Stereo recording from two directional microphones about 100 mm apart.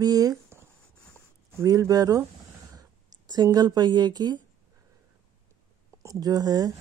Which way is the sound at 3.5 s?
45° right (ahead or behind).